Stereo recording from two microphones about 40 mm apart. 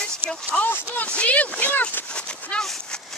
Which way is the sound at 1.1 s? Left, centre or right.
Left.